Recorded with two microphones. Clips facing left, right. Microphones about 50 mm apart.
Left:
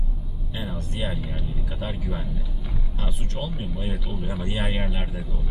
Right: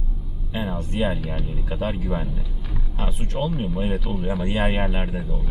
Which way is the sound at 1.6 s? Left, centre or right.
Right.